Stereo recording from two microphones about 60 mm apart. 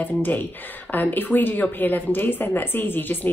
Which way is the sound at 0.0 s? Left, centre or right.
Left.